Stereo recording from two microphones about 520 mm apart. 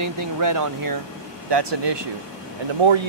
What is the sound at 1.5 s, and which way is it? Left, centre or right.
Speech, right.